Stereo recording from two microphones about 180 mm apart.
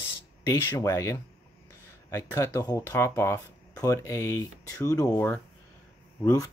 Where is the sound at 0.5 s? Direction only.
20° left (ahead or behind).